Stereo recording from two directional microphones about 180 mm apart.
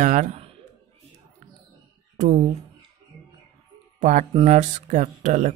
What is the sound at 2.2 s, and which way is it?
Speech, 40° right (ahead or behind).